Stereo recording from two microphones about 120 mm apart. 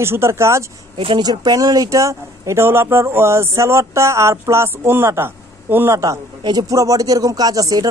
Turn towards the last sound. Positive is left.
turn(degrees=-30)  # may be behind; listen again after turning